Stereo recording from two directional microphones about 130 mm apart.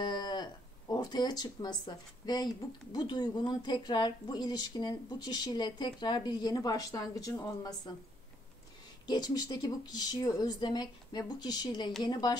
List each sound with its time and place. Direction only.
0.0 s speech: 35° left (ahead or behind)
9.0 s speech: 30° left (ahead or behind)